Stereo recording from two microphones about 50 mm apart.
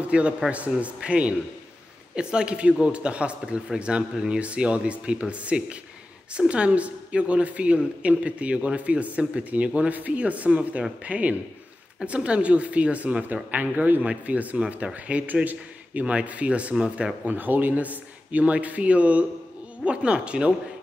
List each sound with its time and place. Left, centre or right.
0.1 s a man's voice: right
17.3 s a man's voice: right